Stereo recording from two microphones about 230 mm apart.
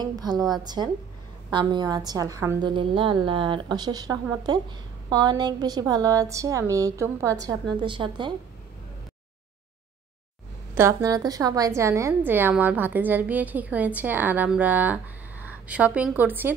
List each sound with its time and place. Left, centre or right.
0.0 s a woman's voice: centre
1.5 s a woman's voice: right
10.7 s a woman's voice: centre